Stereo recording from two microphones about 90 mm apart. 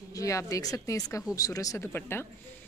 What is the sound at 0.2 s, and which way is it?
Speech, 35° left (ahead or behind).